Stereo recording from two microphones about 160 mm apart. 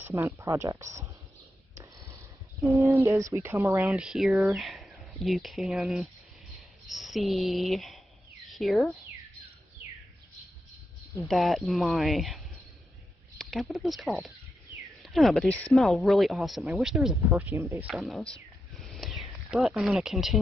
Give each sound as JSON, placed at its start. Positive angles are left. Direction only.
{"t": 0.0, "sound": "speech", "side_deg": -20}
{"t": 2.7, "sound": "speech", "side_deg": -20}
{"t": 3.9, "sound": "speech", "side_deg": -5}
{"t": 11.2, "sound": "speech", "side_deg": 0}
{"t": 17.8, "sound": "speech", "side_deg": 0}